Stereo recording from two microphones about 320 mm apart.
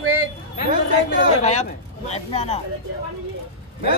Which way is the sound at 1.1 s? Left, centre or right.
Left.